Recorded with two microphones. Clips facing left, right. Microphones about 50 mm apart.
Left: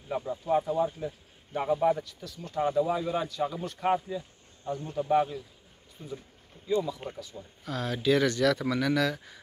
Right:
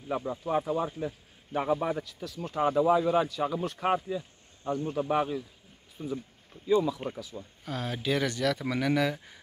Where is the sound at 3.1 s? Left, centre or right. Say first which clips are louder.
Right 3 dB; right.